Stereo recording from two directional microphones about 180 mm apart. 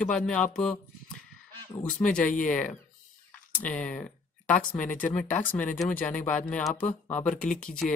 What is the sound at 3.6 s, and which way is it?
Speech, 5° left (ahead or behind).